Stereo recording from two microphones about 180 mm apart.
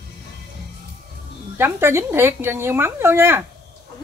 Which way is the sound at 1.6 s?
15° right (ahead or behind).